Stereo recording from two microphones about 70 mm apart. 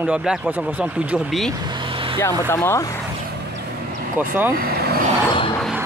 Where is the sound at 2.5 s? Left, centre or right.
Left.